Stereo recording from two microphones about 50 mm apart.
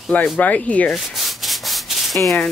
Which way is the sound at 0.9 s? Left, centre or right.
Centre.